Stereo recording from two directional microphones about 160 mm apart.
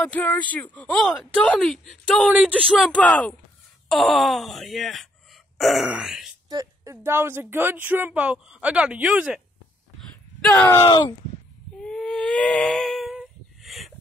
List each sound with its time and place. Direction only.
0.0 s speech: 10° left (ahead or behind)
6.5 s a sound: 20° right (ahead or behind)
7.1 s speech: 15° right (ahead or behind)
10.5 s speech: 15° left (ahead or behind)
10.9 s speech: 30° left (ahead or behind)
11.8 s a sound: 5° left (ahead or behind)